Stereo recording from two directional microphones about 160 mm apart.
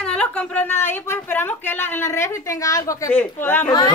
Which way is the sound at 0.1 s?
10° left (ahead or behind).